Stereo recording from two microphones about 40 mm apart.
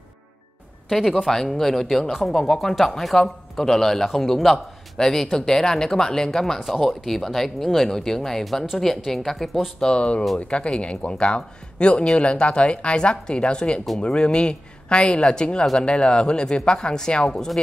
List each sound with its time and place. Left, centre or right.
0.8 s speech: centre
9.8 s speech: left